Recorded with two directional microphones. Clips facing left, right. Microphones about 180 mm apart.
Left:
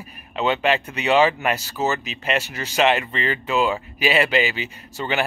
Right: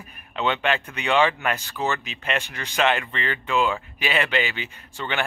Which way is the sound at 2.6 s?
35° left (ahead or behind).